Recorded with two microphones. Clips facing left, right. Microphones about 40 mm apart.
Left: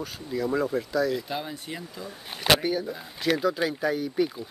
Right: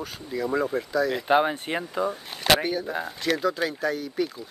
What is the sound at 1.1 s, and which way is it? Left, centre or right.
Speech, right.